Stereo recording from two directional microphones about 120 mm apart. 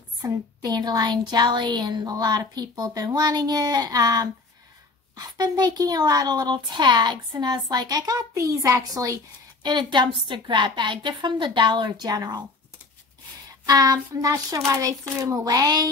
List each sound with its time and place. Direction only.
0.2 s a woman's voice: 35° right (ahead or behind)
13.7 s a woman's voice: 30° right (ahead or behind)